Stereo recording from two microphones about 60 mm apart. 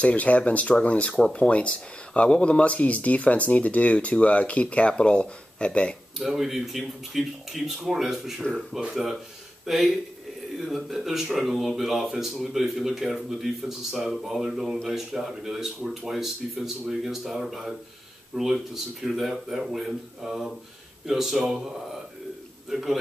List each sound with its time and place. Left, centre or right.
0.0 s speech: left
6.1 s a man's voice: centre
22.7 s a man's voice: centre